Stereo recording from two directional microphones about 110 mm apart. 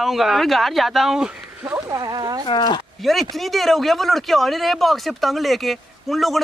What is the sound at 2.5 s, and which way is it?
Speech, 45° left (ahead or behind).